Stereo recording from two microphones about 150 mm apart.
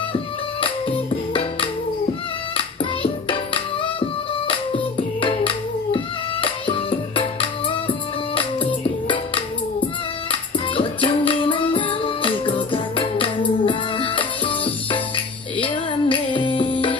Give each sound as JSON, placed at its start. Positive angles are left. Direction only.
{"t": 0.1, "sound": "music", "side_deg": 35}